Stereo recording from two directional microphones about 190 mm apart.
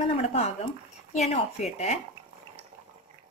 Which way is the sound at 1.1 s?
35° left (ahead or behind).